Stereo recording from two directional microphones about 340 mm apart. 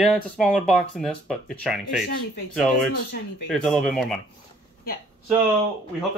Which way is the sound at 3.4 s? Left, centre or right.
Centre.